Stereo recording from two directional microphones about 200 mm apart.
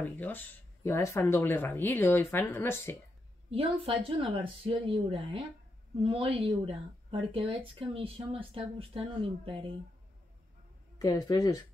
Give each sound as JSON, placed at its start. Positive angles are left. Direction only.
{"t": 0.0, "sound": "speech", "side_deg": 10}
{"t": 3.4, "sound": "a woman's voice", "side_deg": -25}
{"t": 11.0, "sound": "speech", "side_deg": 20}